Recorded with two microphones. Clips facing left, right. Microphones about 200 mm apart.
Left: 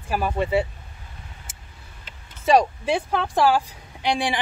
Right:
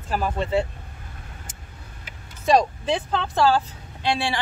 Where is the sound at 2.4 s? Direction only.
5° left (ahead or behind).